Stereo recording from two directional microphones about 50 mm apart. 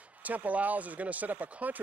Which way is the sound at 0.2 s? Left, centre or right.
Right.